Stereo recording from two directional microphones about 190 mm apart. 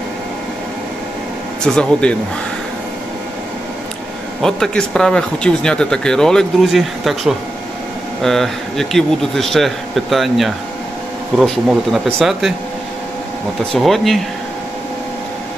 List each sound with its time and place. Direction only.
1.6 s speech: 5° left (ahead or behind)
4.4 s speech: centre (ahead or behind)
13.7 s speech: centre (ahead or behind)